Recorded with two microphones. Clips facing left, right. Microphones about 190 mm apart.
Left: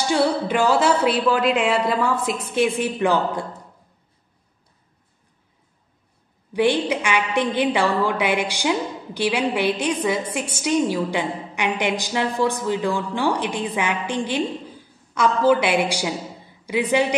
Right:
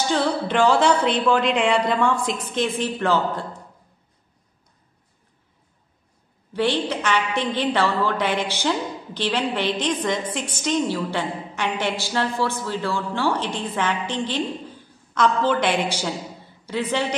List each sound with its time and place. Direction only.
0.1 s a woman's voice: 10° left (ahead or behind)
6.5 s a woman's voice: 10° left (ahead or behind)